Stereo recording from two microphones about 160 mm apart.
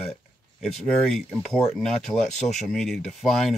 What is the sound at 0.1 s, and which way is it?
Speech, 5° left (ahead or behind).